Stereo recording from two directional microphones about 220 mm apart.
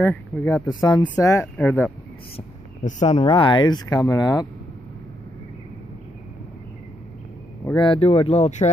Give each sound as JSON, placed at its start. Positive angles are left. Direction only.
{"t": 0.0, "sound": "speech", "side_deg": 10}
{"t": 2.3, "sound": "speech", "side_deg": 30}
{"t": 7.6, "sound": "speech", "side_deg": 20}